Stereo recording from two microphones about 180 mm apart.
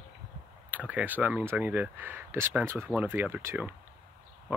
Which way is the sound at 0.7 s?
10° right (ahead or behind).